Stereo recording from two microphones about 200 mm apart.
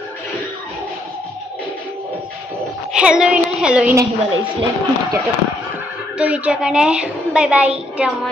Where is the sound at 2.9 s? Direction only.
5° right (ahead or behind).